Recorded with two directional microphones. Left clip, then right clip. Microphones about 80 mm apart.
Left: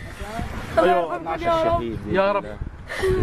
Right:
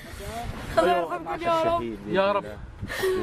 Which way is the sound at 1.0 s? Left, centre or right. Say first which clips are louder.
Left 4 dB; right.